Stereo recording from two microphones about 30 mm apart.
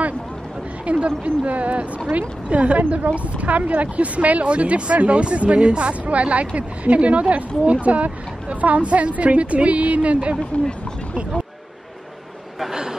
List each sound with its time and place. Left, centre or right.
0.8 s speech: right
6.0 s speech: right
10.5 s speech: left